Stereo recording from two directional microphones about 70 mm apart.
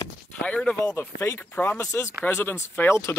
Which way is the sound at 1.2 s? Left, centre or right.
Left.